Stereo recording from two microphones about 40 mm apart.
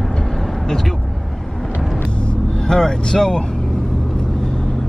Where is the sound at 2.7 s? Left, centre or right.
Centre.